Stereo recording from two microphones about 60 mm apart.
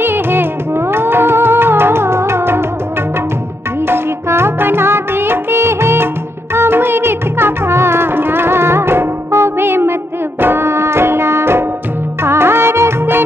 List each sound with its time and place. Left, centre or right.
0.0 s music: right
3.8 s music: right